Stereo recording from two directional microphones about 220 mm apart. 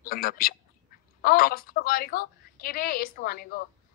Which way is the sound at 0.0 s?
40° left (ahead or behind).